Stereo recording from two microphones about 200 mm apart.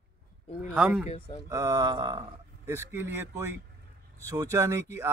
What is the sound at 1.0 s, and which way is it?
Speech, 25° left (ahead or behind).